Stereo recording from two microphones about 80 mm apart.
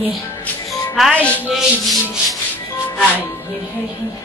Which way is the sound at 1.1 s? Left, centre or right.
Centre.